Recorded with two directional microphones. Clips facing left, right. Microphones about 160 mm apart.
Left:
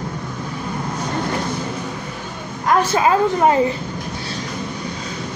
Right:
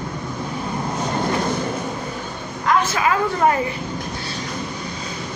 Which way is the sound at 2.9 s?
30° left (ahead or behind).